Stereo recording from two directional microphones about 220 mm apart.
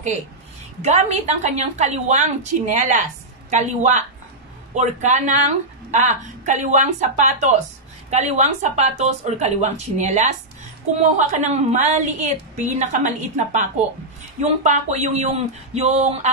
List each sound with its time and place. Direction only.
0.8 s a woman's voice: 30° right (ahead or behind)